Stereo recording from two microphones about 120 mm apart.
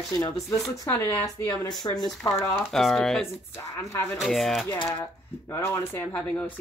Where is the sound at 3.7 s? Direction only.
20° left (ahead or behind).